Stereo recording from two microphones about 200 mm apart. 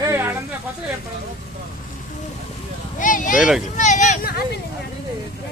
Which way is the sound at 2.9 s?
40° left (ahead or behind).